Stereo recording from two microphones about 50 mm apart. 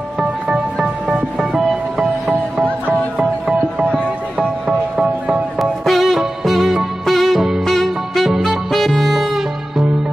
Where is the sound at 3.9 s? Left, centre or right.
Centre.